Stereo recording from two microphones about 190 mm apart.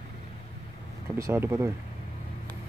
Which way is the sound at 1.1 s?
15° right (ahead or behind).